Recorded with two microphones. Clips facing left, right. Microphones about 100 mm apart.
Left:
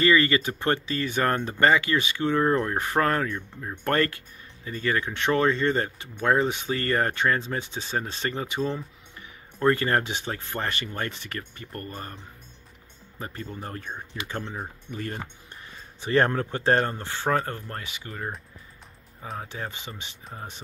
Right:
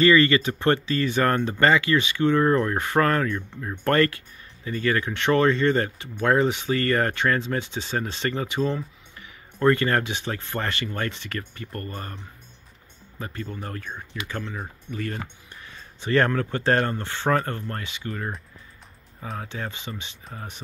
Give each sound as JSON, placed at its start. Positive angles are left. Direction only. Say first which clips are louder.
{"t": 0.0, "sound": "speech", "louder": "right 3 dB", "side_deg": 10}
{"t": 9.6, "sound": "speech", "louder": "right 2 dB", "side_deg": 15}
{"t": 10.2, "sound": "speech", "louder": "right 2 dB", "side_deg": 10}
{"t": 13.2, "sound": "speech", "louder": "right 2 dB", "side_deg": 20}
{"t": 19.4, "sound": "speech", "louder": "right 2 dB", "side_deg": 15}